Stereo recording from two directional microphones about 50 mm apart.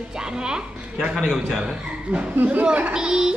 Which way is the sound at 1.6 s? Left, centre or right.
Centre.